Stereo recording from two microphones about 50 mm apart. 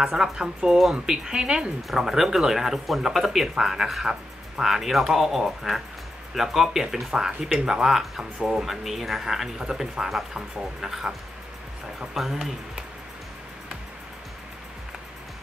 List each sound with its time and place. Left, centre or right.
0.0 s speech: centre
1.9 s speech: centre
8.2 s speech: centre
8.6 s speech: centre